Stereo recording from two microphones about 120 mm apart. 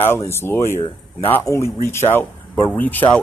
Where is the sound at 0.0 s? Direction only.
20° left (ahead or behind).